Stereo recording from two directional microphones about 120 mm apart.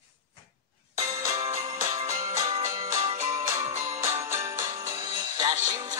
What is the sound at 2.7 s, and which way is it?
Music, 90° right.